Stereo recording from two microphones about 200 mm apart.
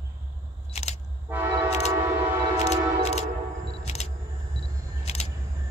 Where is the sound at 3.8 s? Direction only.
35° left (ahead or behind).